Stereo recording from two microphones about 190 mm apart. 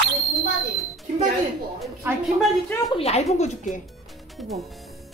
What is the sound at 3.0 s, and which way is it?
Speech, 35° left (ahead or behind).